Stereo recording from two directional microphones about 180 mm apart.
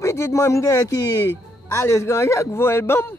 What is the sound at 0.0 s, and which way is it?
Speech, 15° left (ahead or behind).